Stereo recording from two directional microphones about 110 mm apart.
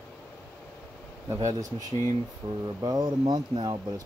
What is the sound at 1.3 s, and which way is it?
Speech, 30° right (ahead or behind).